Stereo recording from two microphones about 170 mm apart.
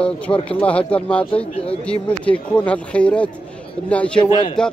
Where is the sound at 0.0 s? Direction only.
5° left (ahead or behind).